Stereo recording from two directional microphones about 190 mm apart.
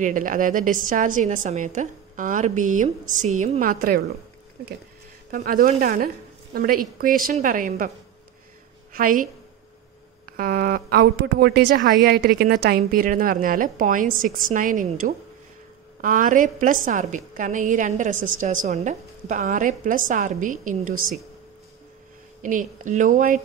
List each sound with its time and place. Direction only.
0.0 s a woman's voice: 45° right (ahead or behind)
5.3 s a woman's voice: 45° right (ahead or behind)
8.9 s a woman's voice: 45° right (ahead or behind)
22.4 s a woman's voice: 45° right (ahead or behind)